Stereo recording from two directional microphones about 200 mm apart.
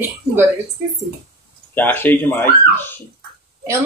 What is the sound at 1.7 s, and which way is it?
Speech, 10° left (ahead or behind).